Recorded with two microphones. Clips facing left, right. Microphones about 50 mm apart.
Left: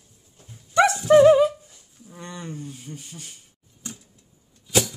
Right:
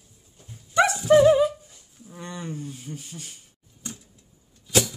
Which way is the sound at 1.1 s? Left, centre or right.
Left.